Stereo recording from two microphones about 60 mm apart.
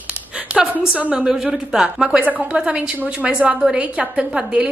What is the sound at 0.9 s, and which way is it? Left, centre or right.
Speech, right.